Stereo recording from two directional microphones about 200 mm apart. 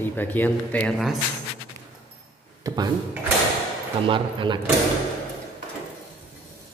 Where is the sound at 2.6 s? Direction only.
20° right (ahead or behind).